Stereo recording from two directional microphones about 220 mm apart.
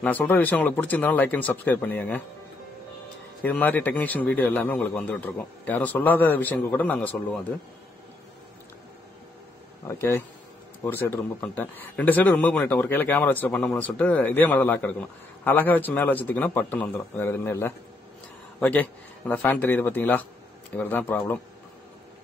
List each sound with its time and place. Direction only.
0.0 s a man's voice: 10° left (ahead or behind)
3.4 s a man's voice: 10° left (ahead or behind)
9.8 s a man's voice: 10° left (ahead or behind)